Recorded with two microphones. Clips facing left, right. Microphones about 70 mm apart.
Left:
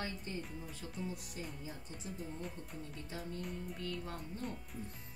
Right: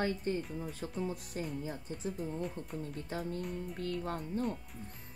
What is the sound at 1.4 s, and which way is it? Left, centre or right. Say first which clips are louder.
Speech: right 9 dB; right.